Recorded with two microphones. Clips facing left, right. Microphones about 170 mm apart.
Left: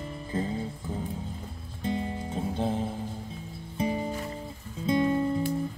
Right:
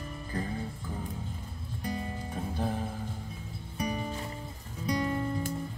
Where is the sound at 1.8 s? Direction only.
25° left (ahead or behind).